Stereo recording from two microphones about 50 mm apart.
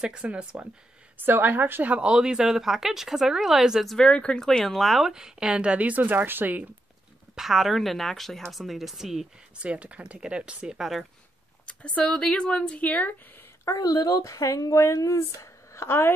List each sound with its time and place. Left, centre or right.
0.0 s speech: right
1.1 s speech: right
2.0 s speech: centre
4.0 s speech: centre
4.5 s speech: centre
5.1 s speech: centre; by 6.7 s right
7.3 s speech: centre
9.6 s speech: right
10.8 s speech: centre
11.6 s speech: left
13.7 s speech: left
14.2 s speech: left